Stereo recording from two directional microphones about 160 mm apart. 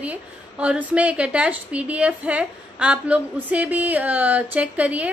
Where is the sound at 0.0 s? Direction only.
10° right (ahead or behind).